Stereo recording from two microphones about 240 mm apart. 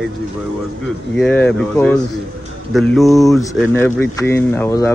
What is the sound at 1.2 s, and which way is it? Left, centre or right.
Speech, centre.